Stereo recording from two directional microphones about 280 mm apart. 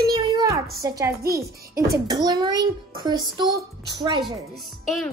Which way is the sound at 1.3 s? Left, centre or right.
Right.